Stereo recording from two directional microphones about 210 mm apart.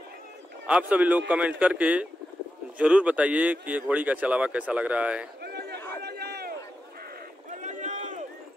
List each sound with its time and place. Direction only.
0.7 s a man's voice: 5° right (ahead or behind)
5.4 s run: 50° right (ahead or behind)
7.6 s run: 35° right (ahead or behind)